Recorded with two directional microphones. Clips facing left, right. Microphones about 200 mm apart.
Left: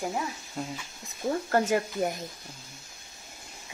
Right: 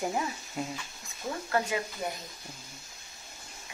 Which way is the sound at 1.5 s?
45° left (ahead or behind).